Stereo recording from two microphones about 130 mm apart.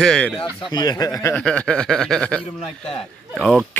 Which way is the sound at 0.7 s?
30° left (ahead or behind).